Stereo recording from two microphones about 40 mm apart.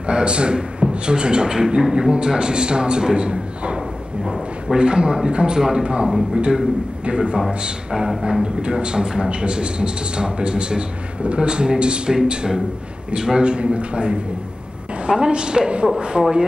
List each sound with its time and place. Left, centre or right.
0.0 s a man's voice: right
4.2 s a sound: centre
4.7 s a man's voice: right
7.1 s a man's voice: right